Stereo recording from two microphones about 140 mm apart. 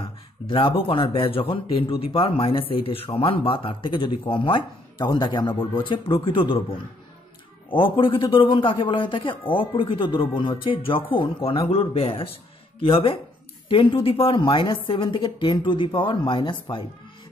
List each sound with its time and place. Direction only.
0.0 s speech: 40° left (ahead or behind)